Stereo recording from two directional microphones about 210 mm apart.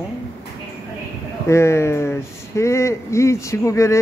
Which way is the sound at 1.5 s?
15° left (ahead or behind).